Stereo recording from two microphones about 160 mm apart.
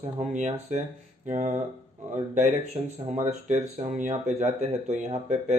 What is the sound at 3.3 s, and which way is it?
Speech, 50° right (ahead or behind).